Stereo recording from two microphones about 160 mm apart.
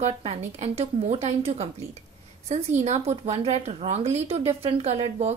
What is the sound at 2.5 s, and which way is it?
A woman's voice, 40° right (ahead or behind).